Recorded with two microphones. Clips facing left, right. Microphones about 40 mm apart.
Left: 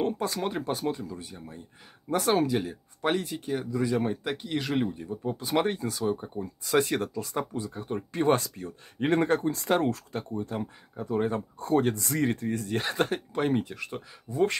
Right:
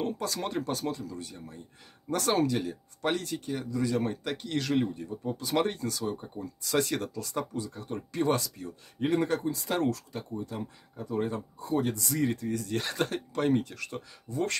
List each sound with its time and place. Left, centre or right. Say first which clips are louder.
0.0 s speech: left 4 dB; left
0.4 s speech: left 2 dB; centre; by 9.8 s left
9.8 s speech: left 2 dB; left
11.5 s speech: left 5 dB; left; by 14.6 s centre